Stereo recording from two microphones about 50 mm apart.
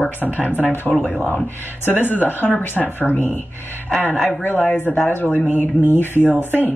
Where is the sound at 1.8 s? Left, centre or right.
Left.